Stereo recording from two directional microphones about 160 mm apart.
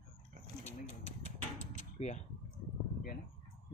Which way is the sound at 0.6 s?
45° left (ahead or behind).